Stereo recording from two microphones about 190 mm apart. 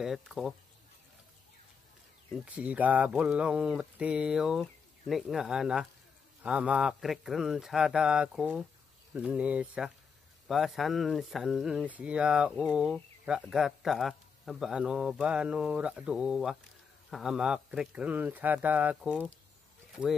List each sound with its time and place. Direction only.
0.0 s speech: centre (ahead or behind)
2.3 s a man's voice: 5° right (ahead or behind)